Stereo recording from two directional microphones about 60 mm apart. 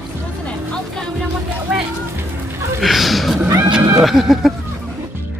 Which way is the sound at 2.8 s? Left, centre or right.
Centre.